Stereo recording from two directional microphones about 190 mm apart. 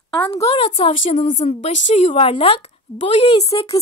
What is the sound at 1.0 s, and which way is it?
A woman's voice, 40° left (ahead or behind).